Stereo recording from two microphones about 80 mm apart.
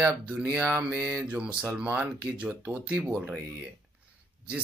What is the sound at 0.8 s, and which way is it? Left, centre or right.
Speech, centre.